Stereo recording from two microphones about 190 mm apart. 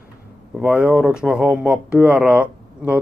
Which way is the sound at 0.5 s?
5° right (ahead or behind).